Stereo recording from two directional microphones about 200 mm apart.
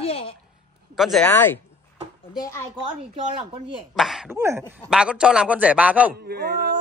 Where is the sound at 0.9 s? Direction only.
Centre (ahead or behind); by 2.6 s 15° left (ahead or behind).